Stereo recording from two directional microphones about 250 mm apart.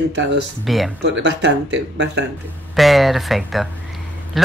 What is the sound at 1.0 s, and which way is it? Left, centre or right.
Speech, right.